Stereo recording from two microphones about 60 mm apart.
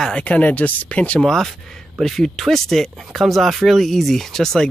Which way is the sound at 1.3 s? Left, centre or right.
Centre.